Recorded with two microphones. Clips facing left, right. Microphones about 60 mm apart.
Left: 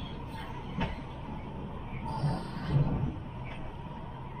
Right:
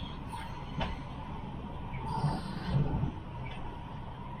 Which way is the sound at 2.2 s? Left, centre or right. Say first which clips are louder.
Left 1 dB; left.